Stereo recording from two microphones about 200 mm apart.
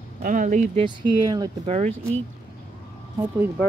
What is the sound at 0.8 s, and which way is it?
Speech, 20° right (ahead or behind).